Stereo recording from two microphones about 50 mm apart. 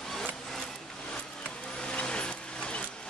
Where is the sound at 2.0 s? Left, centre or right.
Left.